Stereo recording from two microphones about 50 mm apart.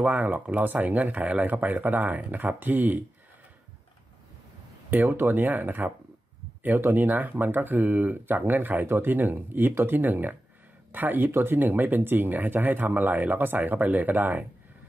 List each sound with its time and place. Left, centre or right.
0.0 s speech: right
4.9 s speech: right